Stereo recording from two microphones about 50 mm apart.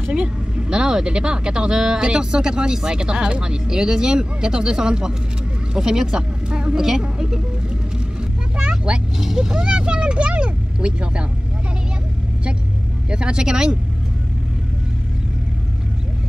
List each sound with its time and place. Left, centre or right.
0.1 s a woman's voice: centre
8.2 s music: right
9.2 s vehicle: centre
13.1 s speech: centre